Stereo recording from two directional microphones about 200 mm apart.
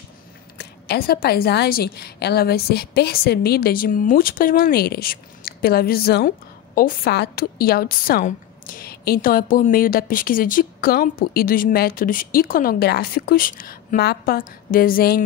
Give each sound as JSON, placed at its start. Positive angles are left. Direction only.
{"t": 0.6, "sound": "a woman's voice", "side_deg": 50}